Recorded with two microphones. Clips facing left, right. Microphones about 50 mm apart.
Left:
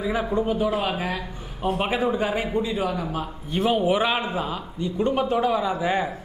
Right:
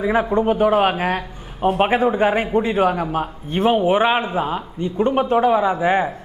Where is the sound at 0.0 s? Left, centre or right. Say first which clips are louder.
Right 6 dB; right.